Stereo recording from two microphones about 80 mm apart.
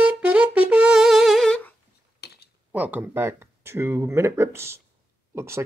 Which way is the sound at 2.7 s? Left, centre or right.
Right.